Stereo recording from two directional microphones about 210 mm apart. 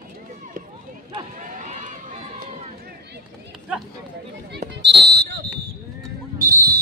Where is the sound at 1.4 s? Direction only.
35° right (ahead or behind).